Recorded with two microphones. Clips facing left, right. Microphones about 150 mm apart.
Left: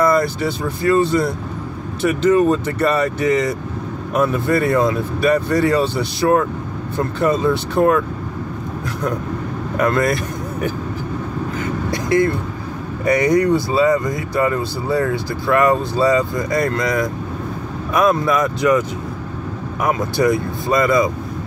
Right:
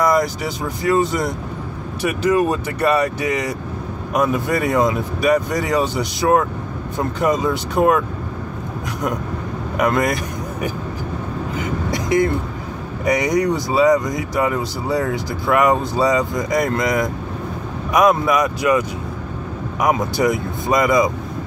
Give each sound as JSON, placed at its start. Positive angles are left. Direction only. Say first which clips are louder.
{"t": 0.0, "sound": "speech", "louder": "left 1 dB", "side_deg": -15}
{"t": 9.8, "sound": "speech", "louder": "left 1 dB", "side_deg": -15}
{"t": 11.5, "sound": "vehicle", "louder": "right 1 dB", "side_deg": -20}
{"t": 13.0, "sound": "speech", "louder": "left 3 dB", "side_deg": -15}